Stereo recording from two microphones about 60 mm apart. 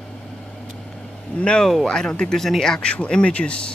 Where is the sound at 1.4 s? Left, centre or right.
Centre.